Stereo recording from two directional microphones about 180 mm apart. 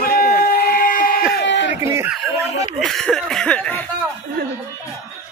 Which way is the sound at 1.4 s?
80° left.